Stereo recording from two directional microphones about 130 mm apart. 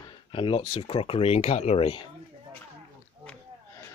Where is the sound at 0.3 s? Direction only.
40° left (ahead or behind).